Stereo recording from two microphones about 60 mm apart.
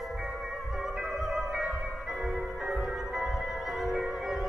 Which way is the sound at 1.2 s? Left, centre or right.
Centre.